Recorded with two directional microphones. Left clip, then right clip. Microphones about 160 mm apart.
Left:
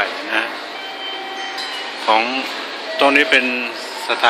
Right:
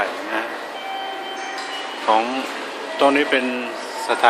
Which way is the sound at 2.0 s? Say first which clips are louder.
Left 2 dB; centre (ahead or behind).